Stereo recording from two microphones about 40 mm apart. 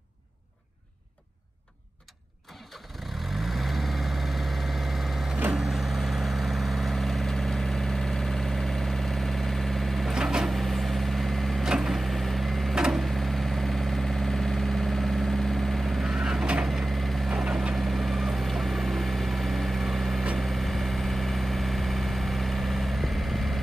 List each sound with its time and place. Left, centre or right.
3.5 s vehicle: centre
10.1 s vehicle: centre
10.4 s vehicle: centre
11.6 s vehicle: centre
12.0 s vehicle: centre
16.0 s vehicle: centre
17.3 s vehicle: right
17.7 s vehicle: centre